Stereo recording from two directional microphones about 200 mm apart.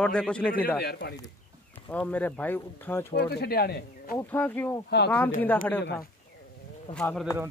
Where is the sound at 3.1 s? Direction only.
55° left (ahead or behind).